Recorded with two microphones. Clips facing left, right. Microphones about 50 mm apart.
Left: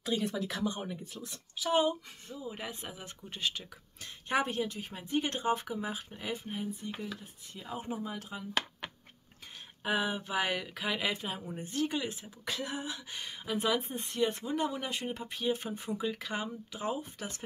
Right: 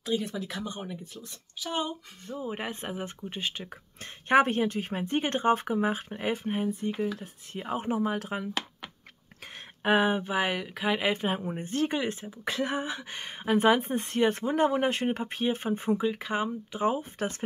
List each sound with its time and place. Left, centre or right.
0.0 s speech: centre
2.2 s speech: right
3.3 s speech: right
4.0 s speech: right
9.8 s speech: right
10.2 s speech: right
11.1 s speech: right
15.9 s speech: right